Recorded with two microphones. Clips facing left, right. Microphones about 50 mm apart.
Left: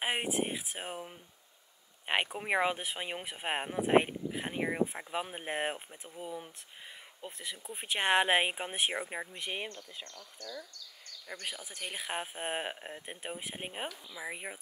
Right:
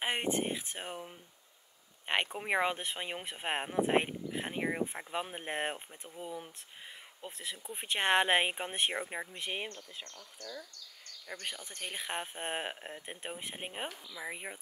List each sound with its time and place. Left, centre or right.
0.0 s speech: centre
10.4 s speech: right
11.4 s speech: centre